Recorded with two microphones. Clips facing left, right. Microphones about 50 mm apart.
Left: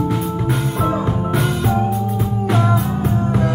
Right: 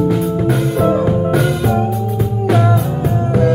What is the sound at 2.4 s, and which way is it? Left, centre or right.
Music, centre.